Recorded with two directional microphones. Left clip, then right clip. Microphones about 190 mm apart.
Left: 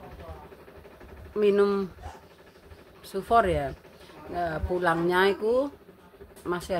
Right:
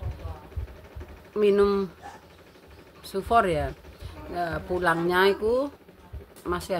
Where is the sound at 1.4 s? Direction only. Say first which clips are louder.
Right 1 dB; 5° left (ahead or behind).